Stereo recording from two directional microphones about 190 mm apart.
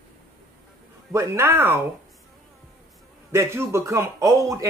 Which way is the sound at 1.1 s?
15° right (ahead or behind).